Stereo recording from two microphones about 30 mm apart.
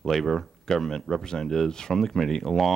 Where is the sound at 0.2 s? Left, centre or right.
Centre.